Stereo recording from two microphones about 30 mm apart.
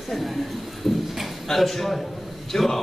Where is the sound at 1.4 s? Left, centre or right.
Centre.